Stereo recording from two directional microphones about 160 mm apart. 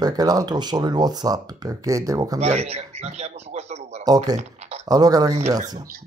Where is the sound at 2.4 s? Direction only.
40° right (ahead or behind).